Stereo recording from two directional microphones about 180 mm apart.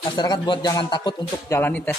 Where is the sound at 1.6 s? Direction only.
10° left (ahead or behind).